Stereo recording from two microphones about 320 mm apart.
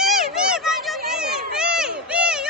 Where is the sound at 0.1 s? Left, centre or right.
Centre.